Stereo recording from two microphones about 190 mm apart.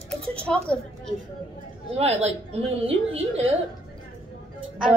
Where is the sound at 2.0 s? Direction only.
35° right (ahead or behind).